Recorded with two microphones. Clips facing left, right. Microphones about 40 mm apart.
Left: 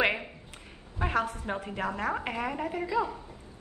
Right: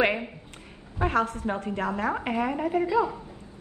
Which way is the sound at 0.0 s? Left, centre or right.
Centre.